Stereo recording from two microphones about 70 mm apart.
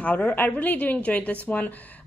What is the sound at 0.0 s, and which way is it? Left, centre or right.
A woman's voice, left.